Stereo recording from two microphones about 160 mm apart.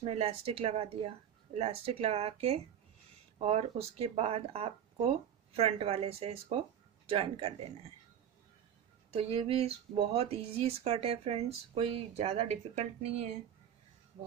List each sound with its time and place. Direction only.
0.0 s speech: 40° right (ahead or behind)
9.1 s speech: 40° right (ahead or behind)